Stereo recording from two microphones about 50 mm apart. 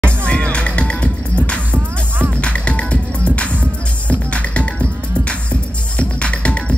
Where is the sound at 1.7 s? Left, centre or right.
Right.